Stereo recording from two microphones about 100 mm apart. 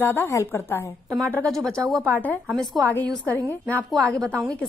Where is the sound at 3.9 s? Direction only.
5° left (ahead or behind).